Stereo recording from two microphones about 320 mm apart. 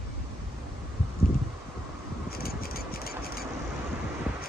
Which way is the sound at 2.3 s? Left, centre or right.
Left.